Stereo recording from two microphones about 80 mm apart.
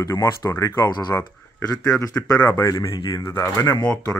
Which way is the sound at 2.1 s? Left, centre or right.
Left.